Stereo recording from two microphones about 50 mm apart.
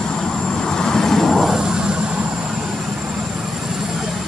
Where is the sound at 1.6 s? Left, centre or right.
Centre.